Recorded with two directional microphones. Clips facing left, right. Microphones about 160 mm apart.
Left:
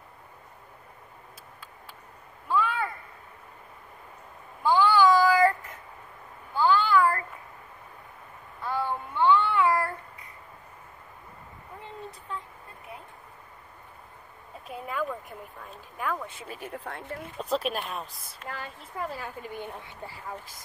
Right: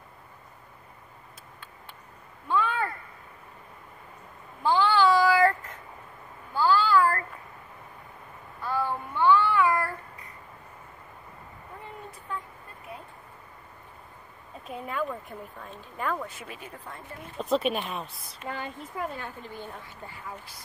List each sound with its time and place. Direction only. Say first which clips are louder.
2.4 s a sound: even; 10° left (ahead or behind)
4.6 s child singing: left 1 dB; 10° left (ahead or behind)
6.5 s a sound: even; 15° left (ahead or behind)
8.6 s child singing: right 1 dB; 20° left (ahead or behind)
14.7 s a sound: even; 5° left (ahead or behind)
15.7 s a woman's voice: right 1 dB; centre (ahead or behind)
16.6 s speech: left 5 dB; 70° left (ahead or behind)
17.4 s a woman's voice: right 3 dB; centre (ahead or behind); by 19.9 s 15° left (ahead or behind)
20.2 s speech: left 2 dB; 45° left (ahead or behind)